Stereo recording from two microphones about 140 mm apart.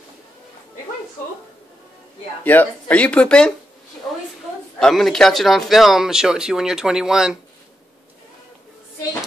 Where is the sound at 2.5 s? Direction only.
10° left (ahead or behind).